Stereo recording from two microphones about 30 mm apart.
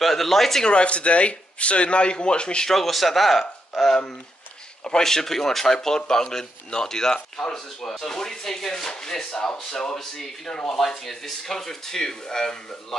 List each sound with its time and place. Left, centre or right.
0.0 s speech: centre
0.7 s a man's voice: left
2.7 s speech: centre
5.0 s speech: centre
10.7 s speech: centre